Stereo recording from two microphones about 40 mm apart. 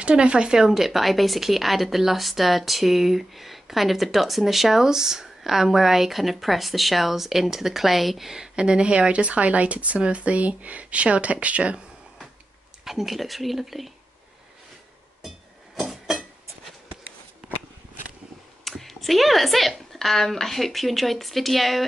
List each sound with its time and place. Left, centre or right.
0.0 s speech: right
0.6 s speech: centre
8.5 s speech: right
12.8 s speech: centre
15.9 s a sound: centre
18.6 s speech: centre